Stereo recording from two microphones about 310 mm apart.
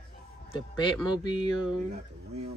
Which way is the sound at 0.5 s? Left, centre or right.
Centre.